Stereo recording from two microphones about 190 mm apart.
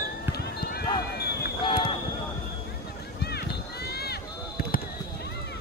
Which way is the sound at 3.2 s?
60° left (ahead or behind).